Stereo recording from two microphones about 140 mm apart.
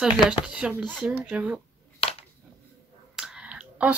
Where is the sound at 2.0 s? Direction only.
45° left (ahead or behind).